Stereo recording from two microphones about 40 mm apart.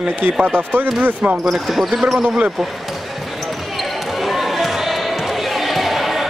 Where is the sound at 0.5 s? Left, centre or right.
Right.